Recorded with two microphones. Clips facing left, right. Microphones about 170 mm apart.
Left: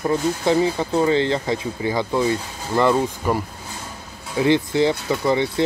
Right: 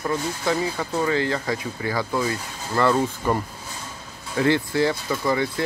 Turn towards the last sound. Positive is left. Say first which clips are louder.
# left 4 dB
turn(degrees=25)  # may be behind; listen again after turning